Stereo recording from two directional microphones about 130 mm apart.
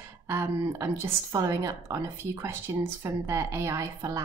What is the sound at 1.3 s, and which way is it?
A woman's voice, 25° right (ahead or behind).